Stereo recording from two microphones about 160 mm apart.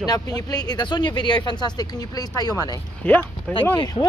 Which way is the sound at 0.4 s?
25° left (ahead or behind).